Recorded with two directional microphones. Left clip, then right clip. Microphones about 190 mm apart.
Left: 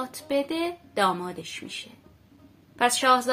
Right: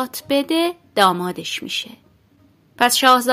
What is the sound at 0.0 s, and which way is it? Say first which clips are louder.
Speech: right 7 dB; 50° right (ahead or behind).